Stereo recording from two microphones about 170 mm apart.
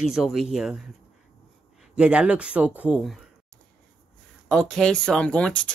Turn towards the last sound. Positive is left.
turn(degrees=5)  # may be behind; listen again after turning